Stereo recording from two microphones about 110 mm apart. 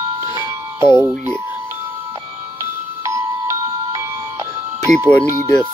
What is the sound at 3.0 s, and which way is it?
Music, 30° right (ahead or behind).